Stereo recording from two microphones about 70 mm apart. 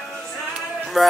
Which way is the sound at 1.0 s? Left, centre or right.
Centre.